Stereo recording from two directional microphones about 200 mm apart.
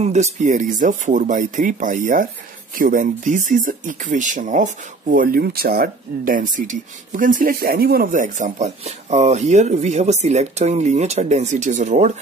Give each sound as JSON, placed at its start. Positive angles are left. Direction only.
{"t": 0.0, "sound": "speech", "side_deg": -35}